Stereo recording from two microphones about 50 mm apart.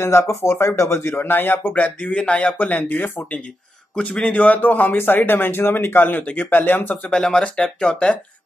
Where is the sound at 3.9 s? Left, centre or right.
Left.